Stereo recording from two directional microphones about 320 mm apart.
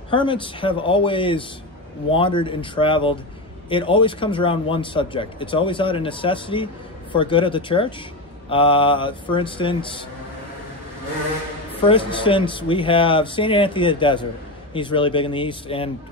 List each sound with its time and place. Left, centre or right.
0.1 s speech: centre
11.9 s speech: centre